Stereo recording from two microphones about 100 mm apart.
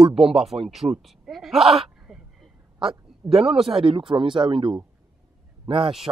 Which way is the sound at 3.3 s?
5° right (ahead or behind).